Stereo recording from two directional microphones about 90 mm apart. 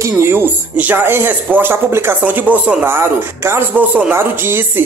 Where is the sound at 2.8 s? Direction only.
30° right (ahead or behind).